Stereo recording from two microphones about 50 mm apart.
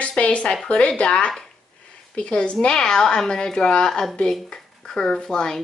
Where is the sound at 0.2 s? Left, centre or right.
Left.